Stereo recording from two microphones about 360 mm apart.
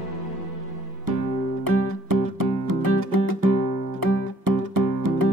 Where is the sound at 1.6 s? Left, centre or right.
Right.